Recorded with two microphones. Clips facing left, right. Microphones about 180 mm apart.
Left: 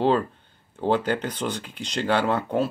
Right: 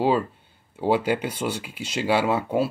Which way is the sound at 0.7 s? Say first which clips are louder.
Right 1 dB; 10° right (ahead or behind).